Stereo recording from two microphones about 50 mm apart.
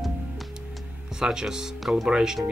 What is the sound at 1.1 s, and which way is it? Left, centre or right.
Speech, centre.